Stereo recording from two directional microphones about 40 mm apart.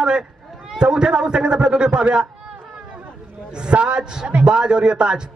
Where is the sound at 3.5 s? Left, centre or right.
Right.